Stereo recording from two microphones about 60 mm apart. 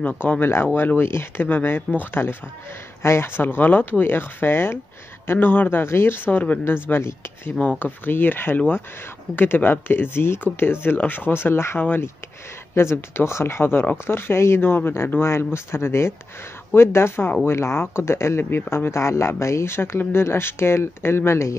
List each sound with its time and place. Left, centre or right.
0.4 s speech: left
7.8 s speech: left
14.6 s speech: left
15.0 s speech: left